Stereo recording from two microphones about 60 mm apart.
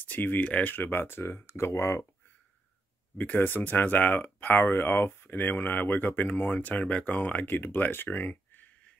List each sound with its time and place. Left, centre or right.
0.0 s speech: left
3.3 s speech: left